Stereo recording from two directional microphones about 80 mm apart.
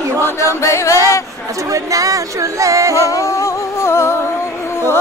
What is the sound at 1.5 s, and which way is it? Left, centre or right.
Speech, right.